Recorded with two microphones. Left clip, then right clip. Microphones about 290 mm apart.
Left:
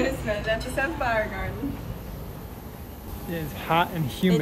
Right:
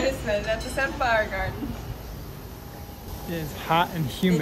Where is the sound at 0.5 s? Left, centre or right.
Centre.